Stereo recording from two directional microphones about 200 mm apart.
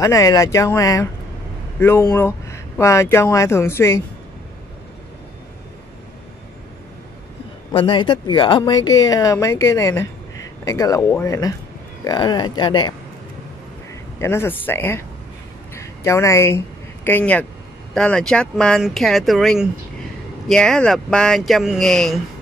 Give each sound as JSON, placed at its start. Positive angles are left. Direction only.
{"t": 0.0, "sound": "speech", "side_deg": 15}
{"t": 7.7, "sound": "speech", "side_deg": 25}
{"t": 8.8, "sound": "speech", "side_deg": 65}
{"t": 9.1, "sound": "speech", "side_deg": 15}
{"t": 14.2, "sound": "speech", "side_deg": 10}